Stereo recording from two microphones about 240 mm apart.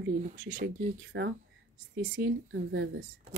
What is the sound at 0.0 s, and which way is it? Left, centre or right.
Speech, right.